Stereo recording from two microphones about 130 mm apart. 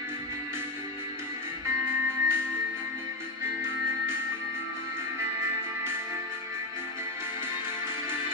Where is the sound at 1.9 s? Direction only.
15° right (ahead or behind).